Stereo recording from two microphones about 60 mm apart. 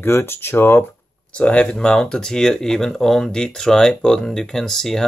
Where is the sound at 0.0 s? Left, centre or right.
Left.